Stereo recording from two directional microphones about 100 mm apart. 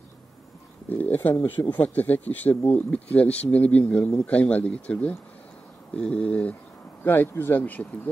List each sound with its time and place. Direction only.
0.8 s speech: 20° left (ahead or behind)